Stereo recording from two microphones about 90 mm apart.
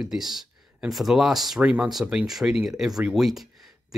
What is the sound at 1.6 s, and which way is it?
Speech, 15° right (ahead or behind).